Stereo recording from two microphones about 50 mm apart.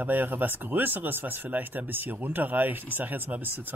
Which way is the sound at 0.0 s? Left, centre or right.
Right.